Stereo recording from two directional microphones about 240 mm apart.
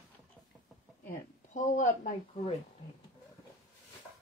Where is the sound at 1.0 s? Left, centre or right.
Left.